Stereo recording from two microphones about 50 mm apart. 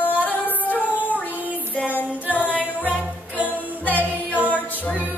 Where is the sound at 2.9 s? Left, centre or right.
Right.